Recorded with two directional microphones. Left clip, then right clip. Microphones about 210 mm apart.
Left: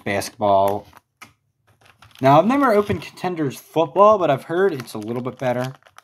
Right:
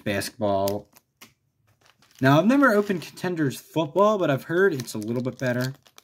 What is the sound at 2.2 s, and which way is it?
Speech, 40° right (ahead or behind).